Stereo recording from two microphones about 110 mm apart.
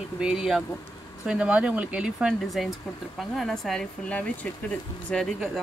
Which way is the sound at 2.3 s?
Centre (ahead or behind).